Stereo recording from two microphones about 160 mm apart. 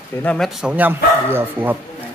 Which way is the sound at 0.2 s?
5° left (ahead or behind).